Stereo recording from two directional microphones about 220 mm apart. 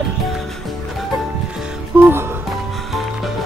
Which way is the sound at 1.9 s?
5° right (ahead or behind).